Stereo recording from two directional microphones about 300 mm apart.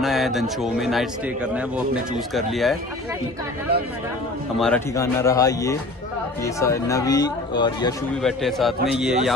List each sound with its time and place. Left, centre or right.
0.0 s speech: centre
4.6 s speech: centre
8.2 s speech: centre